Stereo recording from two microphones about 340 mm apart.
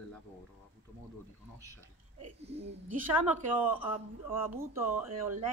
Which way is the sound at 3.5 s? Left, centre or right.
Centre.